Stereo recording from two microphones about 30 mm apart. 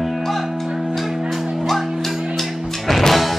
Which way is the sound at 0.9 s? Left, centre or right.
Centre.